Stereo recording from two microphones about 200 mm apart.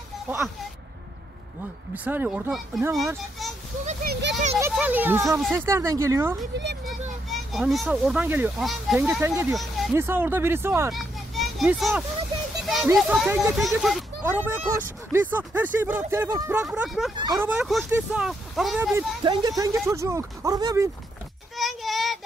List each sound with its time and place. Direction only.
2.0 s a child's voice: 5° right (ahead or behind)
3.8 s a child's voice: 50° right (ahead or behind)
4.6 s a child's voice: 10° right (ahead or behind)
6.5 s speech: 55° right (ahead or behind)
7.2 s speech: centre (ahead or behind)
9.5 s a sound: centre (ahead or behind)
9.9 s a child's voice: 10° right (ahead or behind)
10.9 s a sound: centre (ahead or behind)
12.9 s a child's voice: 5° right (ahead or behind)
16.6 s speech: 5° right (ahead or behind)
17.2 s speech: 20° right (ahead or behind)
17.5 s speech: centre (ahead or behind)
19.2 s a child's voice: 20° right (ahead or behind)
21.5 s child singing: centre (ahead or behind)